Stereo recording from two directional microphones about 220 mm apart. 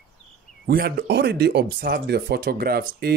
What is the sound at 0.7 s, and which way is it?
Speech, 45° right (ahead or behind).